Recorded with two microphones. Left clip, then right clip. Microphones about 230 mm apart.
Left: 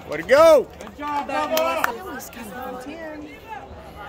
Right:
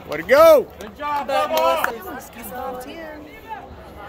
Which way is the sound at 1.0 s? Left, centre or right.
Right.